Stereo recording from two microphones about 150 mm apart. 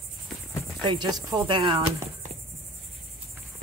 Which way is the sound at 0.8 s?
35° right (ahead or behind).